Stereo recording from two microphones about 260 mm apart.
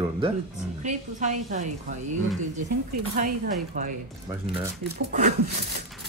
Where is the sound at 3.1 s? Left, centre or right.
Right.